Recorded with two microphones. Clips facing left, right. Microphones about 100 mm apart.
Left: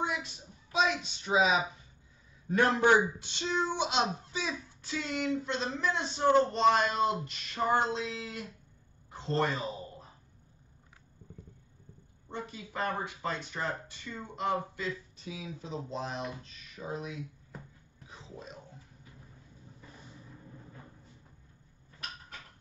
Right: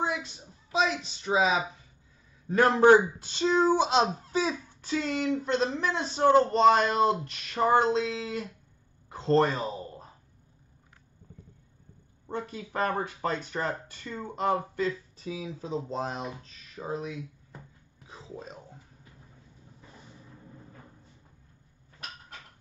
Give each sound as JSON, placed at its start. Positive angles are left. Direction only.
{"t": 0.0, "sound": "speech", "side_deg": -30}
{"t": 7.9, "sound": "speech", "side_deg": -85}
{"t": 9.1, "sound": "speech", "side_deg": -50}
{"t": 12.3, "sound": "speech", "side_deg": -50}
{"t": 18.0, "sound": "whispering", "side_deg": -35}